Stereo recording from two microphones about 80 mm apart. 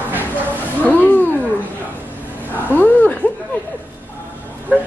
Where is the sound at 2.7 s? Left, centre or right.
Left.